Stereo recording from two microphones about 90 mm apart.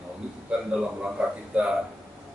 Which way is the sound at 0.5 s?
10° right (ahead or behind).